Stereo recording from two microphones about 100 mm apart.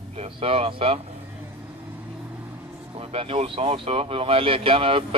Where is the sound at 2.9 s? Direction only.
70° right (ahead or behind).